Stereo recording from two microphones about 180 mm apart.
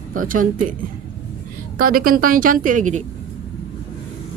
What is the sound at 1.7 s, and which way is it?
A woman's voice, 50° right (ahead or behind).